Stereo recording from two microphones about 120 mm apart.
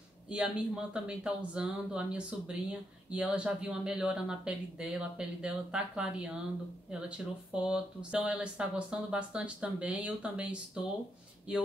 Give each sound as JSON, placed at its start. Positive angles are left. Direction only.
{"t": 0.3, "sound": "speech", "side_deg": -10}